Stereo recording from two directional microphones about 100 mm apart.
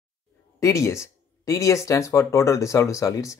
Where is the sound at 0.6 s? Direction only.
30° left (ahead or behind).